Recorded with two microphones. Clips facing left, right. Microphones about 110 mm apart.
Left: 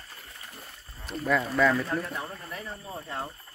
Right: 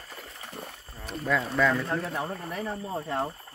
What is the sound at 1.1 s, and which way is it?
Speech, centre (ahead or behind).